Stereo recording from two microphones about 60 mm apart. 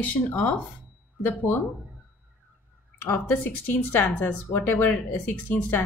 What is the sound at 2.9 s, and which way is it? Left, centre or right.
Speech, left.